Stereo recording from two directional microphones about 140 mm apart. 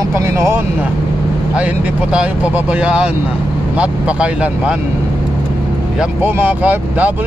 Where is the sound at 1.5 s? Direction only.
5° right (ahead or behind).